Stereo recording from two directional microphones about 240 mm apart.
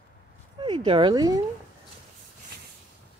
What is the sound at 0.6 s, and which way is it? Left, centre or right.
Speech, right.